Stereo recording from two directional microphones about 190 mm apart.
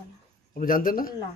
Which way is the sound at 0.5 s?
45° left (ahead or behind).